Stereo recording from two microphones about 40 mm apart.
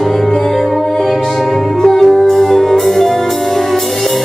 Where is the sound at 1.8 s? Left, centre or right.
Centre.